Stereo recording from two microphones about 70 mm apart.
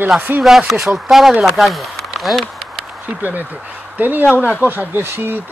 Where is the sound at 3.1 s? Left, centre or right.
Right.